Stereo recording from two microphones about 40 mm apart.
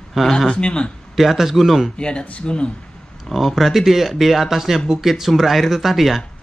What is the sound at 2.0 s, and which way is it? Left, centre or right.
Speech, left.